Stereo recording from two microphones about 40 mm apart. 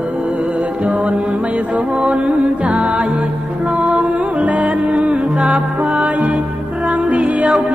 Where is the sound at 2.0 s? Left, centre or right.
Right.